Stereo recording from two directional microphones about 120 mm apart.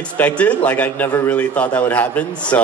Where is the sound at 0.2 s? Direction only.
15° left (ahead or behind).